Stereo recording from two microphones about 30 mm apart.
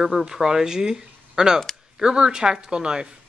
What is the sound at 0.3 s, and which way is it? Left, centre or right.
Speech, centre.